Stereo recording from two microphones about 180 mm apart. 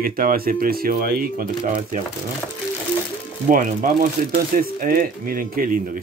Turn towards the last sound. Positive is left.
turn(degrees=-50)  # may be behind; listen again after turning